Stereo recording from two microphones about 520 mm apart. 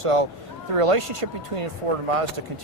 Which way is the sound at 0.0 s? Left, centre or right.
Right.